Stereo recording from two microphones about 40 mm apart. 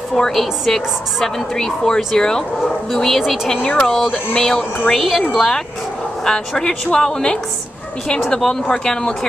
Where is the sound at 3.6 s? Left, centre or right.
Left.